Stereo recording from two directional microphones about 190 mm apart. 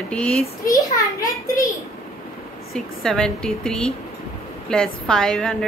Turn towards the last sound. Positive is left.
turn(degrees=5)  # may be behind; listen again after turning